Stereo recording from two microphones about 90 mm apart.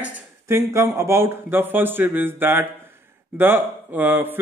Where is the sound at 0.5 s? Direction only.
30° right (ahead or behind).